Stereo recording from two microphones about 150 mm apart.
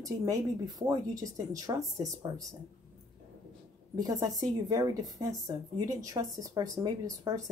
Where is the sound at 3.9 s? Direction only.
25° right (ahead or behind).